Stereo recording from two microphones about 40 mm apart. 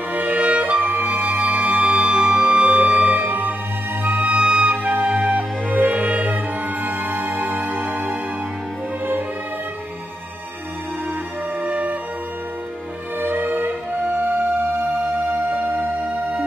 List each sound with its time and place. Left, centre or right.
0.1 s music: right
4.2 s music: right
5.3 s music: right
11.6 s music: right
13.2 s music: right